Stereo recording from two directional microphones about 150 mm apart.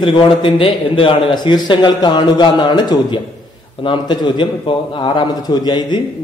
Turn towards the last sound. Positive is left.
turn(degrees=30)  # may be behind; listen again after turning